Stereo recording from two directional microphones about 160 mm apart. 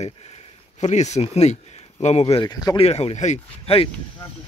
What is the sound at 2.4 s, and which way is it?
Speech, 25° left (ahead or behind).